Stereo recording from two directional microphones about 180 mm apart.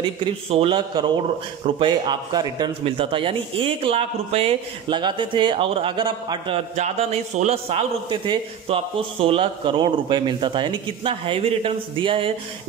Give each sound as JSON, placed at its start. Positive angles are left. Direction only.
{"t": 0.2, "sound": "a man's voice", "side_deg": -30}